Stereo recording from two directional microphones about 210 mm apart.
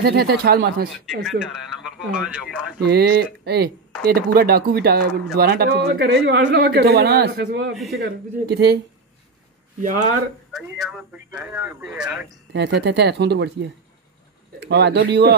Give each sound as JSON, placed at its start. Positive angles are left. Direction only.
{"t": 0.0, "sound": "speech", "side_deg": -45}
{"t": 1.2, "sound": "speech", "side_deg": 0}
{"t": 2.8, "sound": "speech", "side_deg": -50}
{"t": 7.7, "sound": "speech", "side_deg": 0}
{"t": 8.0, "sound": "speech", "side_deg": -50}
{"t": 10.5, "sound": "speech", "side_deg": 0}
{"t": 12.5, "sound": "speech", "side_deg": -55}
{"t": 14.6, "sound": "speech", "side_deg": -55}